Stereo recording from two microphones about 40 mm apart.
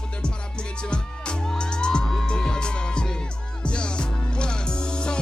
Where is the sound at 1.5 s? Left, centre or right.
Left.